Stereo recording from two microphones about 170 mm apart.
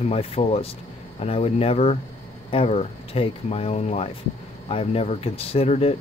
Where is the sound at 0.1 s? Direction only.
35° left (ahead or behind).